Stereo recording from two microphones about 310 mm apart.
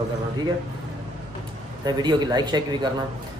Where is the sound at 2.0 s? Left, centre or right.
Centre.